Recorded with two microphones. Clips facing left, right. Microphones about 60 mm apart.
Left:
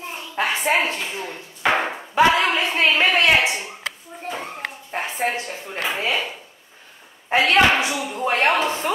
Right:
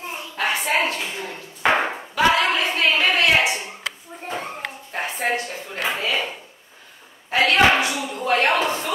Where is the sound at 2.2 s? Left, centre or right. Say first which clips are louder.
Left 2 dB; left.